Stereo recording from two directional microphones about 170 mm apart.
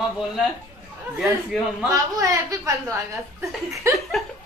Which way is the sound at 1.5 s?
Centre (ahead or behind).